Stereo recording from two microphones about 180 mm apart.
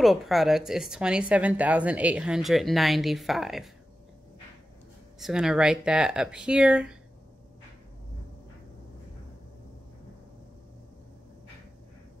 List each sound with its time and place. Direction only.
0.0 s speech: centre (ahead or behind)
5.2 s speech: 5° right (ahead or behind)